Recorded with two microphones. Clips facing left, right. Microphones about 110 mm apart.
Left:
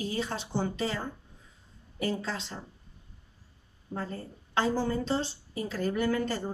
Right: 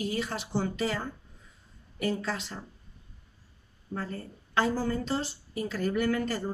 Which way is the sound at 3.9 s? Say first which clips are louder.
Even; 25° left (ahead or behind).